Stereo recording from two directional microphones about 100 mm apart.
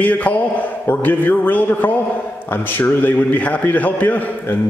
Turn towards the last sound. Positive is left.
turn(degrees=15)  # may be behind; listen again after turning